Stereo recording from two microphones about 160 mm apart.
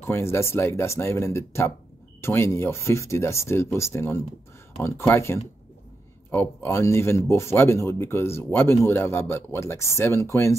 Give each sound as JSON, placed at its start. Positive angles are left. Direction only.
{"t": 0.0, "sound": "speech", "side_deg": 15}